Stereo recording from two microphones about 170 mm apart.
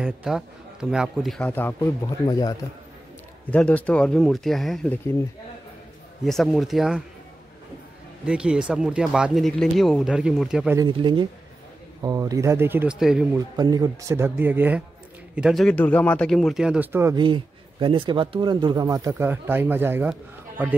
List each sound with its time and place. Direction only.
0.0 s a man's voice: 5° right (ahead or behind); by 2.5 s 20° left (ahead or behind)
3.4 s a man's voice: 10° left (ahead or behind)
6.2 s a man's voice: centre (ahead or behind)
8.3 s a man's voice: 5° right (ahead or behind)
10.8 s speech: 30° right (ahead or behind); by 13.4 s 5° right (ahead or behind)
13.6 s a man's voice: 20° right (ahead or behind)
17.1 s speech: 30° right (ahead or behind); by 20.7 s 10° right (ahead or behind)